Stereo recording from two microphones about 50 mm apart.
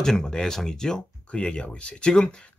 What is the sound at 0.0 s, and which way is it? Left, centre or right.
Speech, centre.